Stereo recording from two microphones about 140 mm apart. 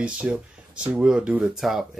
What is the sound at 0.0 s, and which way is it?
Speech, 5° right (ahead or behind).